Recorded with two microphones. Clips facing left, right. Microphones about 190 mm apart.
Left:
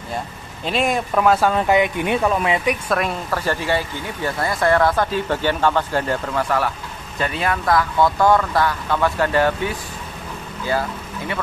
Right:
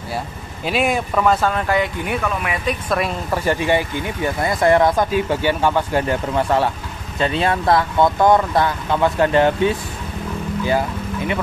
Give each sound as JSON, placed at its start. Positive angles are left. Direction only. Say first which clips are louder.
{"t": 0.7, "sound": "speech", "louder": "right 1 dB", "side_deg": -5}
{"t": 1.5, "sound": "speech", "louder": "left 3 dB", "side_deg": 20}
{"t": 3.3, "sound": "speech", "louder": "right 3 dB", "side_deg": -15}
{"t": 10.7, "sound": "vehicle", "louder": "right 1 dB", "side_deg": -20}